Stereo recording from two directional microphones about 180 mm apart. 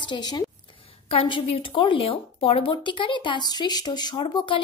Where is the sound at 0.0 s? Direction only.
25° left (ahead or behind).